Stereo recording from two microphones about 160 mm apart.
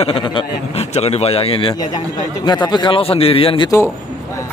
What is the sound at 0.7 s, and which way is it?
A man's voice, 40° left (ahead or behind).